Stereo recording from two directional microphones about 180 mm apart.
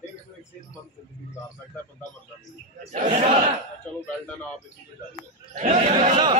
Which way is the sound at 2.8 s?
35° right (ahead or behind).